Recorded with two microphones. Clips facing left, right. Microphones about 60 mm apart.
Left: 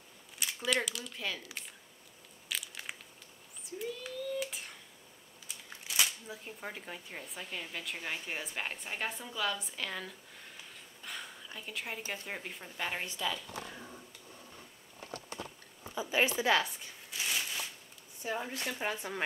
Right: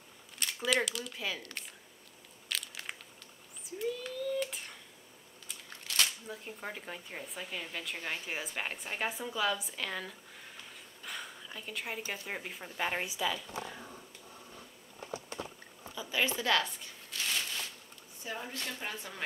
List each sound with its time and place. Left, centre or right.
0.4 s speech: centre
2.4 s crunch: centre
3.6 s speech: centre
10.6 s a sound: centre
12.1 s speech: centre
15.9 s a sound: left; by 17.6 s centre
18.2 s speech: left